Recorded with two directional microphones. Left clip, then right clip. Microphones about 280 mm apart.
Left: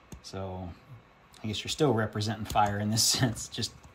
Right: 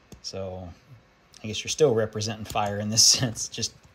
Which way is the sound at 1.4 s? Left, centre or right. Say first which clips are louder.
Right 6 dB; right.